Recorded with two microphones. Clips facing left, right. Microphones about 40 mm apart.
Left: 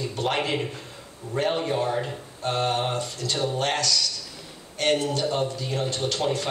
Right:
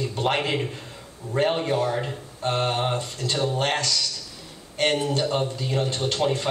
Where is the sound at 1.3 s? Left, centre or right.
Centre.